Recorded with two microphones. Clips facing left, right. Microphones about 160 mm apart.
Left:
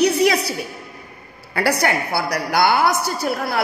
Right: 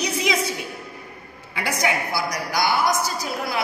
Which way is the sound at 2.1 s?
65° left (ahead or behind).